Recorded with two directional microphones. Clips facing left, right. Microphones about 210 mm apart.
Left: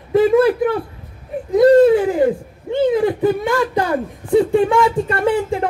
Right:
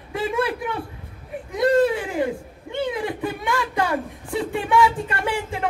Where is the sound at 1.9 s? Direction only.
35° left (ahead or behind).